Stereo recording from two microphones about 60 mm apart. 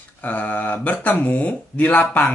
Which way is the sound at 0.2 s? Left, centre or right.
Left.